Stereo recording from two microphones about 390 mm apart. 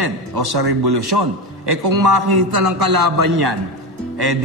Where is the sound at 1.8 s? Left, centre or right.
Right.